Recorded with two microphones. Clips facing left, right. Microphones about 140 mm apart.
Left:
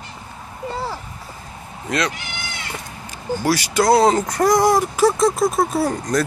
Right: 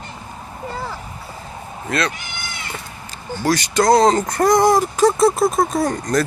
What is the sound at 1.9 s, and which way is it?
Speech, 15° left (ahead or behind).